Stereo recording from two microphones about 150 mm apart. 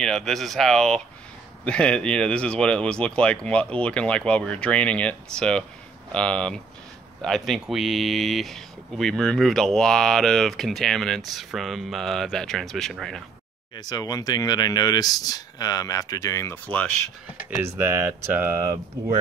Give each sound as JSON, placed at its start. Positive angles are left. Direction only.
{"t": 0.0, "sound": "speech", "side_deg": 5}
{"t": 13.7, "sound": "speech", "side_deg": 25}
{"t": 16.6, "sound": "speech", "side_deg": 10}
{"t": 17.6, "sound": "speech", "side_deg": -15}